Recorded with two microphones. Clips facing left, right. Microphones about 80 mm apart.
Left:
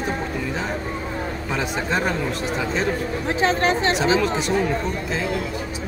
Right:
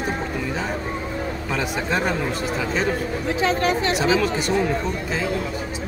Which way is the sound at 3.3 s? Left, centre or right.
Left.